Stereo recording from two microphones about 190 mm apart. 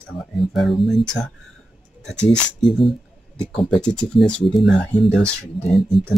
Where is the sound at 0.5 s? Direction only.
Centre (ahead or behind).